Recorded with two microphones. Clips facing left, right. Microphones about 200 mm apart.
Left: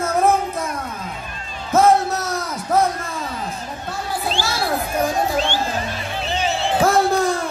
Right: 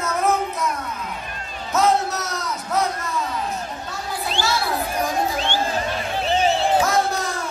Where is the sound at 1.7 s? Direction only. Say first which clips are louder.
Left 4 dB; 50° left (ahead or behind).